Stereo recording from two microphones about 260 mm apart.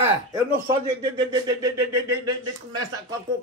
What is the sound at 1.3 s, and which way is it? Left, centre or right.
Speech, centre.